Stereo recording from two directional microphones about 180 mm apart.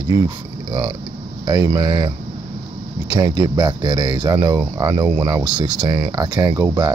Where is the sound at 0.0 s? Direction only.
25° right (ahead or behind).